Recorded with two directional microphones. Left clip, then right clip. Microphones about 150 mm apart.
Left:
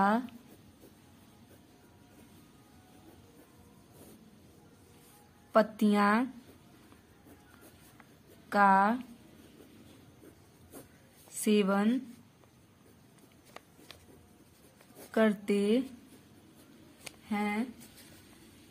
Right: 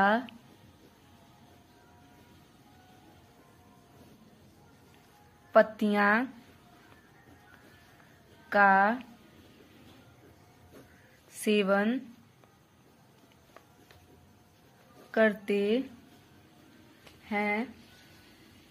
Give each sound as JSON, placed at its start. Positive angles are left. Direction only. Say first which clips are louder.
{"t": 0.0, "sound": "speech", "louder": "right 3 dB", "side_deg": 10}
{"t": 5.5, "sound": "a woman's voice", "louder": "right 3 dB", "side_deg": 20}
{"t": 8.5, "sound": "speech", "louder": "right 2 dB", "side_deg": 15}
{"t": 11.3, "sound": "a woman's voice", "louder": "right 3 dB", "side_deg": 20}
{"t": 15.0, "sound": "a woman's voice", "louder": "right 3 dB", "side_deg": 20}
{"t": 17.3, "sound": "speech", "louder": "right 4 dB", "side_deg": 20}